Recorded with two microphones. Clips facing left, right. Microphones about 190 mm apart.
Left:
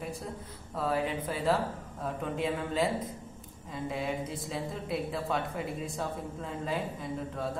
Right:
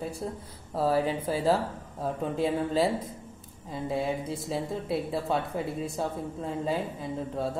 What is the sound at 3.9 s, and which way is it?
Speech, 30° right (ahead or behind).